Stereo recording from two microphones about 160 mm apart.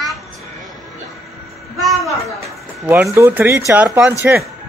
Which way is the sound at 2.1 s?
20° left (ahead or behind).